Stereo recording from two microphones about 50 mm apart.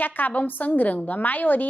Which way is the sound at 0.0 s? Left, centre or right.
Left.